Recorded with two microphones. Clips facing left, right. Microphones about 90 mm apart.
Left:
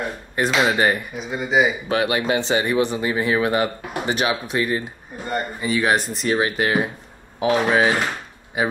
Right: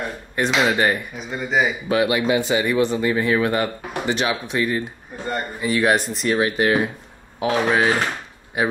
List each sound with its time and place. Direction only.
0.4 s speech: 5° left (ahead or behind)
1.9 s speech: 30° left (ahead or behind)
2.7 s speech: 15° left (ahead or behind)